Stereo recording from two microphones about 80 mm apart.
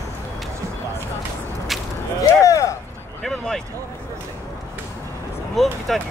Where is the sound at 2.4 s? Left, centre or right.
Left.